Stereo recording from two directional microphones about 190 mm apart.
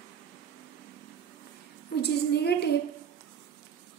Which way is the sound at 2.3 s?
60° left (ahead or behind).